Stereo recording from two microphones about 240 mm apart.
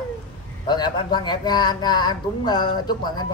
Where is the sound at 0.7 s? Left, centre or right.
Centre.